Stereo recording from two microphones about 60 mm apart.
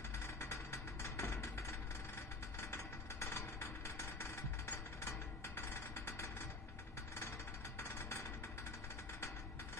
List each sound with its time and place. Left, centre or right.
0.4 s vehicle: left